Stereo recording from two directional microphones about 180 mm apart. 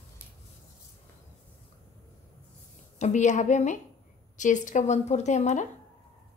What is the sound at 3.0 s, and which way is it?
A woman's voice, 40° left (ahead or behind).